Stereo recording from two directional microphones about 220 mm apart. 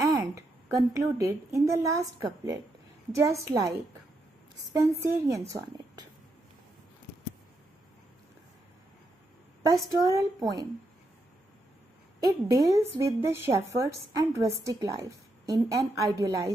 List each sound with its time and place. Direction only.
0.0 s a woman's voice: 15° right (ahead or behind)
9.7 s a woman's voice: 15° right (ahead or behind)
12.2 s a woman's voice: 15° right (ahead or behind)